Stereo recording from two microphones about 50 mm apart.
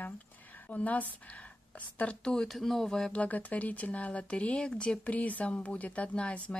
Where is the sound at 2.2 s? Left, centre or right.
Centre.